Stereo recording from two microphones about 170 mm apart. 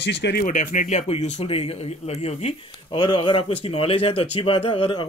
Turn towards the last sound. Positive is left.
turn(degrees=30)  # may be behind; listen again after turning